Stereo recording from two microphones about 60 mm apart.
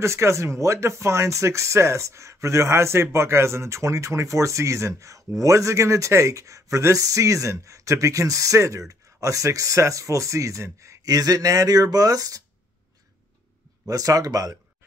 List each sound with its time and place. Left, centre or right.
0.0 s speech: right
13.8 s speech: right